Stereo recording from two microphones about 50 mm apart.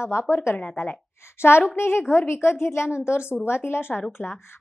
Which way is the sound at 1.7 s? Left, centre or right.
Left.